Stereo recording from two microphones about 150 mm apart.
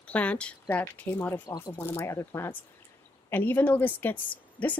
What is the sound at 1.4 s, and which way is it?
Speech, 25° left (ahead or behind).